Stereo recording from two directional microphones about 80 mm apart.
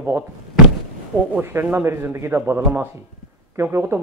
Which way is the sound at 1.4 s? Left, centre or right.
Right.